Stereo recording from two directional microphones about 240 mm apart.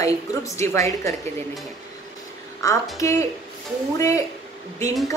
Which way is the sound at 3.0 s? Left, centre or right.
Centre.